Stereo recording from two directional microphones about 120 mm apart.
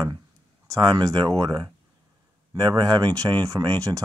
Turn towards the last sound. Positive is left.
turn(degrees=-30)  # may be behind; listen again after turning